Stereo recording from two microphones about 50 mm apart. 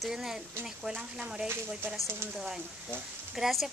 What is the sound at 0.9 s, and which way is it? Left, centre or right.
Speech, right.